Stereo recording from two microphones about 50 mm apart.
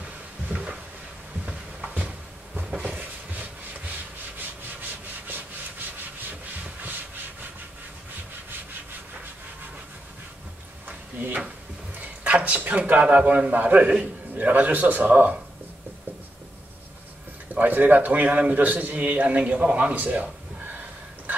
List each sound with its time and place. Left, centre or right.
0.0 s a sound: right
1.4 s heart sounds: right
2.8 s a sound: right
4.8 s rub: right
6.6 s rub: right
10.9 s drawer open or close: right
12.2 s a sound: right
13.0 s a man's voice: right
17.6 s a man's voice: right